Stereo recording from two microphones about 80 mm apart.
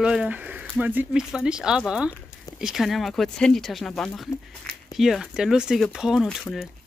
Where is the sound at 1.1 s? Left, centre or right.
Centre.